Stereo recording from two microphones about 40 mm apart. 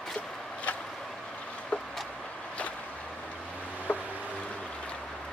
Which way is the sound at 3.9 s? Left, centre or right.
Left.